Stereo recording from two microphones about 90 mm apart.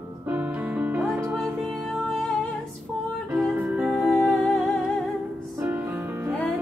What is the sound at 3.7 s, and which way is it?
Music, 5° right (ahead or behind).